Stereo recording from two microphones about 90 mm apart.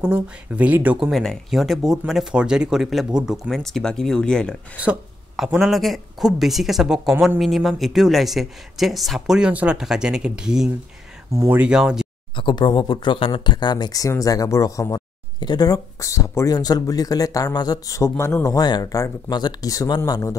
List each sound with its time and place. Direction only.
0.0 s speech: 15° right (ahead or behind)
1.1 s speech: 5° left (ahead or behind)
5.6 s speech: centre (ahead or behind)
9.4 s speech: 15° right (ahead or behind)
11.4 s speech: 20° right (ahead or behind)
11.7 s speech: 5° right (ahead or behind)
12.4 s speech: 65° left (ahead or behind); by 18.5 s 30° left (ahead or behind)
18.5 s a man's voice: 50° left (ahead or behind)